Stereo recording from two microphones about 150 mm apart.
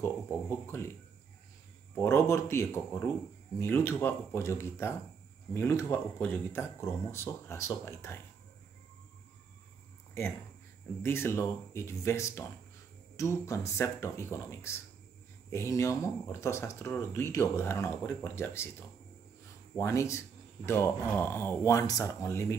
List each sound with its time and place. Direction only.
0.0 s speech: 15° left (ahead or behind)
2.0 s speech: 15° left (ahead or behind)
11.0 s speech: 15° left (ahead or behind)